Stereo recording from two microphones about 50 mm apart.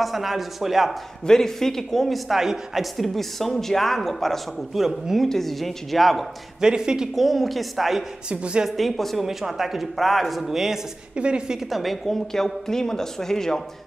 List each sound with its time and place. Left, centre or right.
0.0 s speech: centre
1.2 s speech: centre
6.6 s speech: centre
7.2 s speech: centre
8.3 s a woman's voice: right
8.6 s speech: centre
11.1 s a woman's voice: centre
11.7 s speech: centre